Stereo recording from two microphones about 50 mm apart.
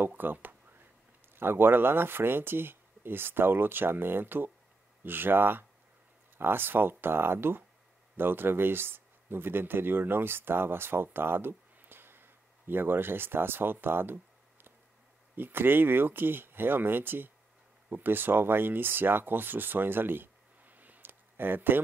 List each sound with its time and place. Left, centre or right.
0.0 s speech: right